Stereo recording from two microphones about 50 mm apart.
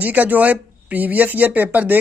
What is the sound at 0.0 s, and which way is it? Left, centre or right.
Speech, right.